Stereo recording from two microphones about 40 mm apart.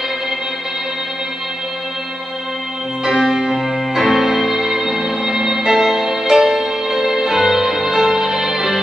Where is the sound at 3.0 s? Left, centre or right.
Centre.